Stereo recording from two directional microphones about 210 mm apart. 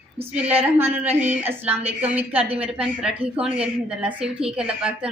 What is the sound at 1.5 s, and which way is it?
A woman's voice, 10° right (ahead or behind).